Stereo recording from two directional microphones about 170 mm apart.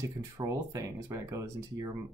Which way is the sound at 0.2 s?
20° right (ahead or behind).